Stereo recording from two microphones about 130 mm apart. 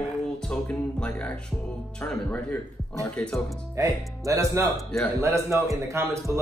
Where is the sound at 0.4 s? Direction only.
5° left (ahead or behind).